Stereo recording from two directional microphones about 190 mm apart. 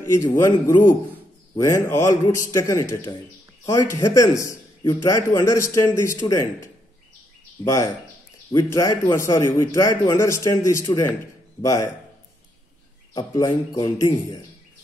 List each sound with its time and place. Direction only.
0.2 s a man's voice: 15° left (ahead or behind)
13.1 s a man's voice: 20° left (ahead or behind)